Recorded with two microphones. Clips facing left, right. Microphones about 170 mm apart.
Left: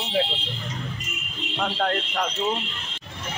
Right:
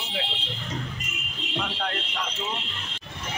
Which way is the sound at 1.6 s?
50° left (ahead or behind).